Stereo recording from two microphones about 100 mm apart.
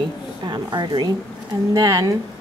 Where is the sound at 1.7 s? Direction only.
35° right (ahead or behind).